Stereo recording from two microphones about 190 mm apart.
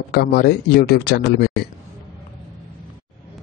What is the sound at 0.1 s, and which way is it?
A man's voice, 55° left (ahead or behind).